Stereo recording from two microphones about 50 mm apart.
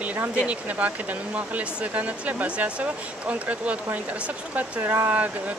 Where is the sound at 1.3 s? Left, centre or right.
Right.